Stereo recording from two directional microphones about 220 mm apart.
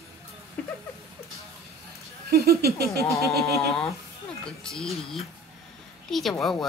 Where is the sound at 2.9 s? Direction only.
15° left (ahead or behind).